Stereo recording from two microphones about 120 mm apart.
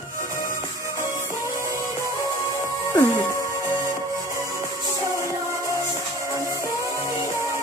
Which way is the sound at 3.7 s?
25° right (ahead or behind).